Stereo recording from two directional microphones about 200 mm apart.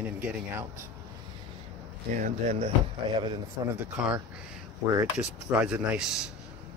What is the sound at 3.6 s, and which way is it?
Speech, 15° right (ahead or behind).